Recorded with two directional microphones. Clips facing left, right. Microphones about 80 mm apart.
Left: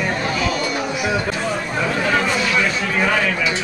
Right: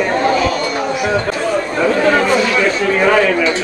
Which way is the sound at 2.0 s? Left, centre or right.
Right.